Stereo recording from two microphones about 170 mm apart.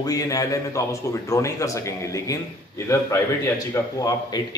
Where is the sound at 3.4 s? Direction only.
20° left (ahead or behind).